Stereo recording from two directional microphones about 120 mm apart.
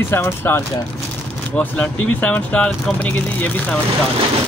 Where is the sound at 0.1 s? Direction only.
20° left (ahead or behind).